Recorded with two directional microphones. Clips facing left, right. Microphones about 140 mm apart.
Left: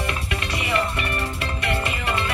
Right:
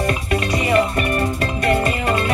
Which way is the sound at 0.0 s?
40° right (ahead or behind).